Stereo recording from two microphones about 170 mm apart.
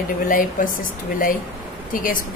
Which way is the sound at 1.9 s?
55° left (ahead or behind).